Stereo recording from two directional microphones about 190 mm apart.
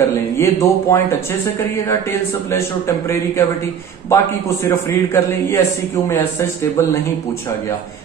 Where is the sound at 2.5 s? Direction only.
15° left (ahead or behind).